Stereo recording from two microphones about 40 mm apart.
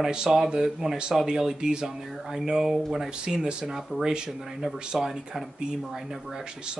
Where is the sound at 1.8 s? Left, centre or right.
Centre.